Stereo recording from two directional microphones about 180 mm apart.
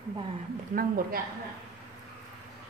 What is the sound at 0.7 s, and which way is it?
Speech, 50° right (ahead or behind).